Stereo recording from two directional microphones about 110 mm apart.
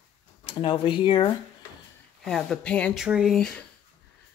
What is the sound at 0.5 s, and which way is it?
Speech, 50° left (ahead or behind).